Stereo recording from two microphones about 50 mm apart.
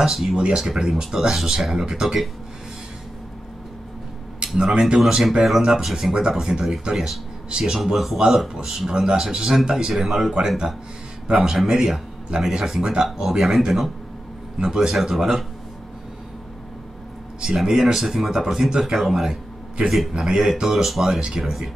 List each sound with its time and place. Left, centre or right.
0.0 s speech: centre
4.6 s speech: centre
17.4 s speech: centre
20.2 s speech: centre
20.6 s speech: centre